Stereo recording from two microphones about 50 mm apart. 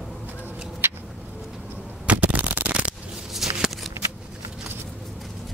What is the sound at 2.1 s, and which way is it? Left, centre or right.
Shuffling cards, right.